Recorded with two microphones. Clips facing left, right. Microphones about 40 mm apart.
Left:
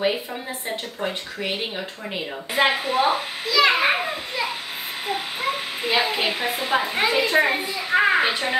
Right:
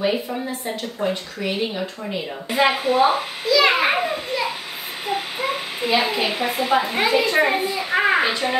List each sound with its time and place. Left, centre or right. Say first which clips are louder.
0.7 s speech: right 3 dB; left
2.5 s a child's voice: right 2 dB; centre
5.8 s a woman's voice: right 3 dB; centre
6.3 s a child's voice: right 3 dB; centre
8.2 s a woman's voice: right 1 dB; centre